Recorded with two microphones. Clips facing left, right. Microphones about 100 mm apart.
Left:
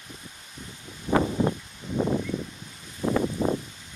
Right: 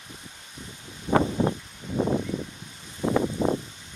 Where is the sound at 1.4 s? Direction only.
30° right (ahead or behind).